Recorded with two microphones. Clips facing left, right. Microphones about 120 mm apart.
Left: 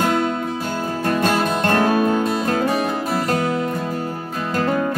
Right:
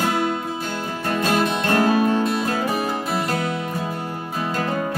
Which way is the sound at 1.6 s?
50° left (ahead or behind).